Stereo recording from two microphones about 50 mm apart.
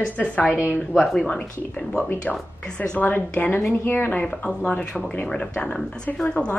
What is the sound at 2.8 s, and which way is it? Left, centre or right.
Speech, left.